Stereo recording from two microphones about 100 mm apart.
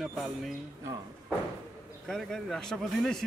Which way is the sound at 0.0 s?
Centre (ahead or behind).